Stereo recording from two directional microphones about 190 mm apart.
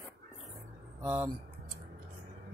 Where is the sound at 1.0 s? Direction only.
20° right (ahead or behind).